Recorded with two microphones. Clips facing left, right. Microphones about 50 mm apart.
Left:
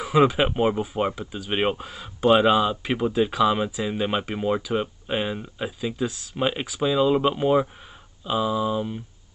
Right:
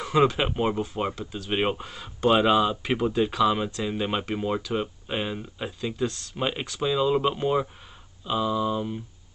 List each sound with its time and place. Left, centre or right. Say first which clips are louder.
0.0 s speech: left 3 dB; centre